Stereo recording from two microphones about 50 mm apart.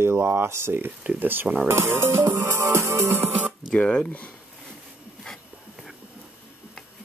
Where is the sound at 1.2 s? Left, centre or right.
Right.